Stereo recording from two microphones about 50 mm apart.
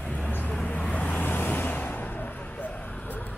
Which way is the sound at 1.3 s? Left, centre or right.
Left.